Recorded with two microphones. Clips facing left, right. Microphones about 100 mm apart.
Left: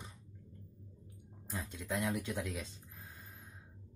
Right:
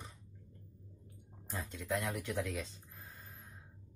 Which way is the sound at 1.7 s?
20° left (ahead or behind).